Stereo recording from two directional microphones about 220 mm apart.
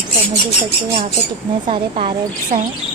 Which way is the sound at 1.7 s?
25° right (ahead or behind).